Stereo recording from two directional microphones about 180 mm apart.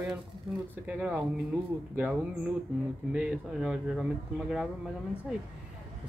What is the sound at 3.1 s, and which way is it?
Speech, 5° right (ahead or behind).